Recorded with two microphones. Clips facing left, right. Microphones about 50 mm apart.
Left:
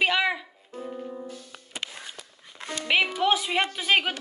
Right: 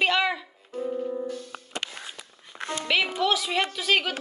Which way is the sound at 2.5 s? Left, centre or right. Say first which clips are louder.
Right 5 dB; right.